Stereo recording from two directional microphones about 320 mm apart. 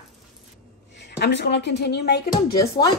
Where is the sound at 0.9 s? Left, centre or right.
Left.